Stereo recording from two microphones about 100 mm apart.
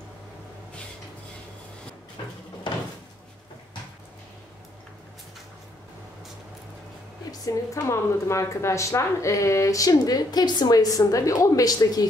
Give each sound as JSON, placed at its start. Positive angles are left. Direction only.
{"t": 7.2, "sound": "a woman's voice", "side_deg": 35}